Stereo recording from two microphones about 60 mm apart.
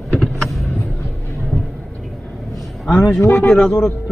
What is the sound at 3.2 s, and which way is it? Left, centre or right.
Speech, left.